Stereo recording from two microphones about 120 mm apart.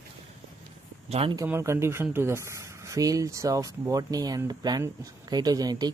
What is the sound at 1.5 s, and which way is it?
Speech, 20° right (ahead or behind).